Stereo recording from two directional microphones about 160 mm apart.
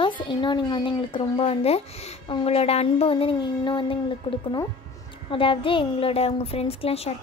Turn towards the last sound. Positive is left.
turn(degrees=40)  # may be behind; listen again after turning